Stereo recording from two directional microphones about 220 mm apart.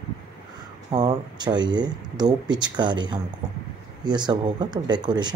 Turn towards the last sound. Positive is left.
turn(degrees=-20)  # may be behind; listen again after turning